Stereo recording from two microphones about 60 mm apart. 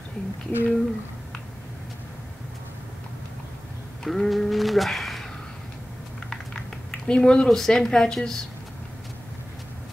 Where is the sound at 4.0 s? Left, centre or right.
Centre.